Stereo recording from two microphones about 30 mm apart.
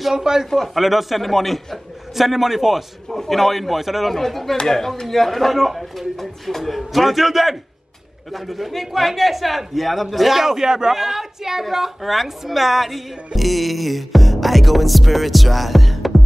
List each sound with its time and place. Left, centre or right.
0.1 s a man's voice: centre
0.7 s speech: centre
3.1 s speech: centre
4.1 s a woman's voice: centre